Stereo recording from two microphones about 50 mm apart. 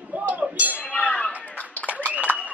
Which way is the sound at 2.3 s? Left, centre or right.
Left.